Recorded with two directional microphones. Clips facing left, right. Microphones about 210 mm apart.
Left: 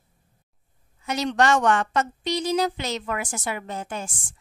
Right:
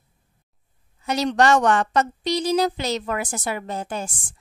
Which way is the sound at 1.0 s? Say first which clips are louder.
Right 3 dB; 35° right (ahead or behind).